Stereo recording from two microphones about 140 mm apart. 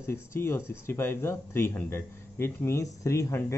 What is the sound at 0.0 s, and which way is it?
Speech, 20° left (ahead or behind).